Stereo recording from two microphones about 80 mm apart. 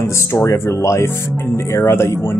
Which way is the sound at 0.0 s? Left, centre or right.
Left.